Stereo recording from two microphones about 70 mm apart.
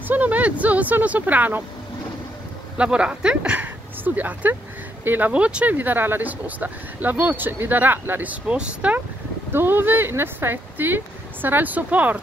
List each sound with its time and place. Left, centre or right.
0.1 s speech: right
2.8 s speech: centre
9.5 s speech: right